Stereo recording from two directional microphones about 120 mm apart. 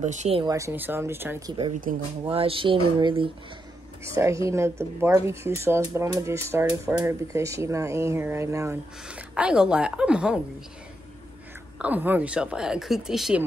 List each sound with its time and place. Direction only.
0.0 s speech: 80° right
0.5 s speech: 25° right (ahead or behind)
1.9 s speech: 90° right
2.2 s speech: 50° right (ahead or behind)
4.0 s speech: 25° right (ahead or behind)
9.0 s a woman's voice: 10° right (ahead or behind)
11.8 s a woman's voice: 15° right (ahead or behind)